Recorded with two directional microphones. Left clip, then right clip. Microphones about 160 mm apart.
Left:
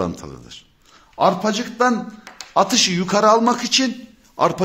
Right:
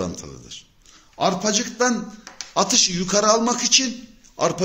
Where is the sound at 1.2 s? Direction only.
45° left (ahead or behind).